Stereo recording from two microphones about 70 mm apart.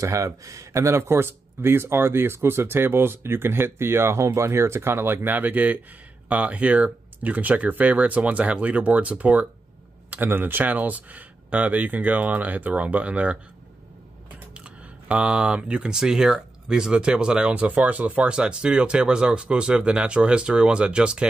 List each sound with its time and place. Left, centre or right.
0.0 s speech: right; by 13.4 s centre
14.5 s speech: centre